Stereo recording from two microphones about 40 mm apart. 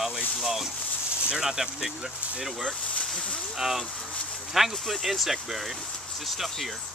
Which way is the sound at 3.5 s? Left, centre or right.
Centre.